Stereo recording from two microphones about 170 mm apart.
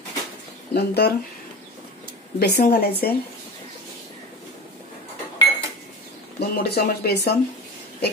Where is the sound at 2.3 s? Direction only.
65° left (ahead or behind).